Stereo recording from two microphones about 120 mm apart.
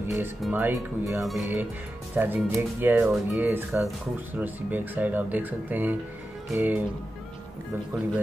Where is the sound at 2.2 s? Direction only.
15° right (ahead or behind).